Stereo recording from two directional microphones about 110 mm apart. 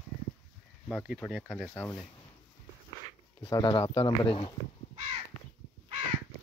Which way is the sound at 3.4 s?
45° left (ahead or behind).